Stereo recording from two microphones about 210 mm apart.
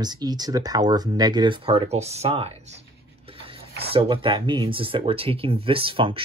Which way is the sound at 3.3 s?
25° right (ahead or behind).